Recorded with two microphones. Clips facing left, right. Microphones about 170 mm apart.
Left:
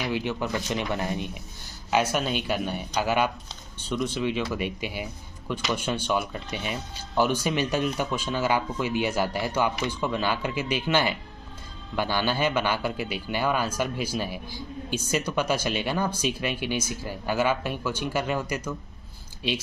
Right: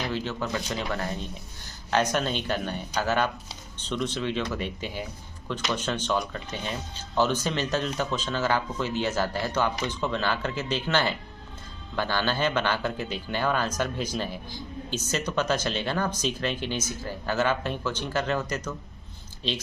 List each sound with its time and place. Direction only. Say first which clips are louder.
0.0 s a man's voice: left 2 dB; 15° left (ahead or behind)